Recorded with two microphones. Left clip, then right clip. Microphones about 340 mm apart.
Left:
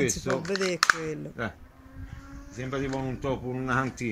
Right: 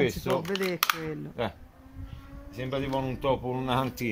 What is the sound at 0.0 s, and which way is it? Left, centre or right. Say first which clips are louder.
Speech: right 1 dB; centre.